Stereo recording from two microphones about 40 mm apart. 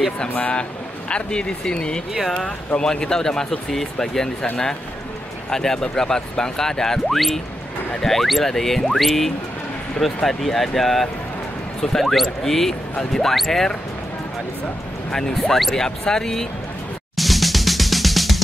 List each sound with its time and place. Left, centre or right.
0.4 s speech: left
5.5 s speech: centre
15.0 s speech: centre
17.2 s drum: centre